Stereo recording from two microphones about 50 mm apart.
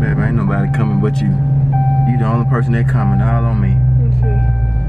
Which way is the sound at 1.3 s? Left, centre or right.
Centre.